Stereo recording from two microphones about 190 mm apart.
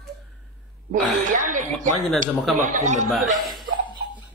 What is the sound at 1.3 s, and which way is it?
Speech, 40° right (ahead or behind).